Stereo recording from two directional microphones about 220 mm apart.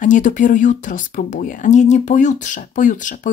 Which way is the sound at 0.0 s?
35° left (ahead or behind).